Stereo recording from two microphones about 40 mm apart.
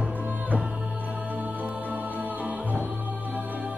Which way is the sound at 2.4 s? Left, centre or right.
Right.